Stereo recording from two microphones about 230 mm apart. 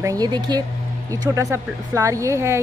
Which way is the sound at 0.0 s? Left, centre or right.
Centre.